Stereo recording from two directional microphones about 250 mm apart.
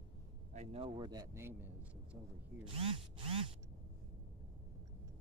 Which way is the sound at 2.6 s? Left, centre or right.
Right.